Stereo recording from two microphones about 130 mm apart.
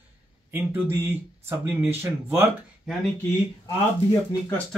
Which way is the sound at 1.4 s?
20° right (ahead or behind).